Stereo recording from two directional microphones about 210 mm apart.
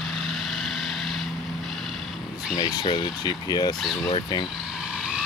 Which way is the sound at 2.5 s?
20° left (ahead or behind).